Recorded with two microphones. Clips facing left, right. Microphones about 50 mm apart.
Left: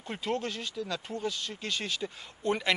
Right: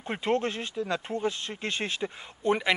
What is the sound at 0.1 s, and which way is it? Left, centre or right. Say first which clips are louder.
Speech: right 5 dB; right.